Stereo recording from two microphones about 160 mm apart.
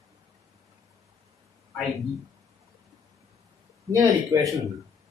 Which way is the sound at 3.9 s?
25° right (ahead or behind).